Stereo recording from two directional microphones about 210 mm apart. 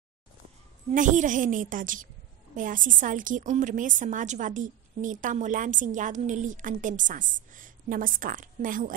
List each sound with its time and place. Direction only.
0.9 s a woman's voice: 35° right (ahead or behind)